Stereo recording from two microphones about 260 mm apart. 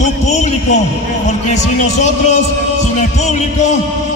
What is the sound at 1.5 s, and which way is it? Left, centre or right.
Speech, left.